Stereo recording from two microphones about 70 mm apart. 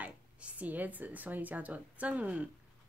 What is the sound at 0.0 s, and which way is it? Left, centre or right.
A woman's voice, right.